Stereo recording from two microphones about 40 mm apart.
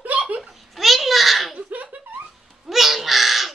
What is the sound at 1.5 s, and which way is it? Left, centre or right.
Laughter, right.